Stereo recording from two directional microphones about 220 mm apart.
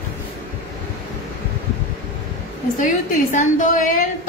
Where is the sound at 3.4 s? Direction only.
35° left (ahead or behind).